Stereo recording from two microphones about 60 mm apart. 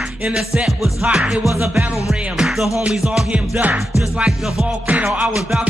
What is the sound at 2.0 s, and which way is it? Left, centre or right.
Music, centre.